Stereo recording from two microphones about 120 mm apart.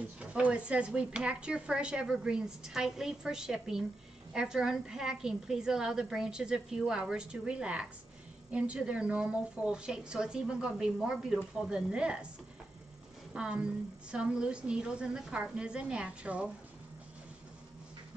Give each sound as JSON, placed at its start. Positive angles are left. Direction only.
{"t": 0.2, "sound": "a woman's voice", "side_deg": -10}
{"t": 13.3, "sound": "speech", "side_deg": -5}